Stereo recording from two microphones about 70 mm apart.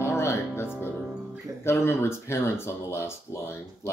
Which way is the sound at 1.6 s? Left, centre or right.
Left.